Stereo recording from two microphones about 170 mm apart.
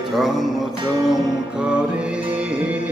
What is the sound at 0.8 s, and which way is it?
Music, 25° right (ahead or behind).